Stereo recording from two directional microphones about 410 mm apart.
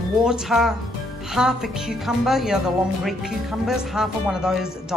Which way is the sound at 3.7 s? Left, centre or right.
Centre.